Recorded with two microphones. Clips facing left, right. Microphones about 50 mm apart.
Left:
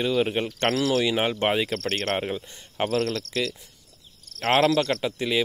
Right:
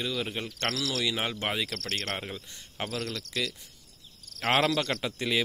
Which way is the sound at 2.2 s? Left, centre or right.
Left.